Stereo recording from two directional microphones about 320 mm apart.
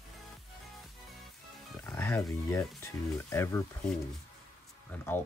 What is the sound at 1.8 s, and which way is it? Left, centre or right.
Speech, centre.